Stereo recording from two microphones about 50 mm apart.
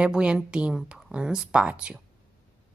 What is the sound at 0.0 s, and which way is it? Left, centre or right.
Speech, right.